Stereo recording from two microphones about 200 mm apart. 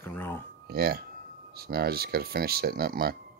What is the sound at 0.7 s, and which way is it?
Speech, 50° right (ahead or behind).